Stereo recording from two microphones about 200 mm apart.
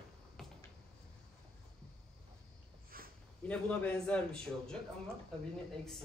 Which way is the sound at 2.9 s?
45° right (ahead or behind).